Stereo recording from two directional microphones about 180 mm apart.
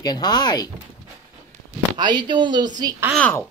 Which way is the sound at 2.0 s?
25° right (ahead or behind).